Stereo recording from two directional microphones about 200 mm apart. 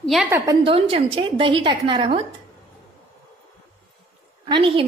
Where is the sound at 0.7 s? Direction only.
25° right (ahead or behind).